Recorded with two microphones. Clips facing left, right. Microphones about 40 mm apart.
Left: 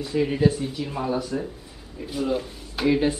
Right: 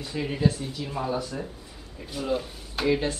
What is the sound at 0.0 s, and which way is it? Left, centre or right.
Speech, centre.